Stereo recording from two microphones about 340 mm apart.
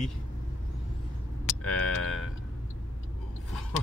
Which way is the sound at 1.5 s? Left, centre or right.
Left.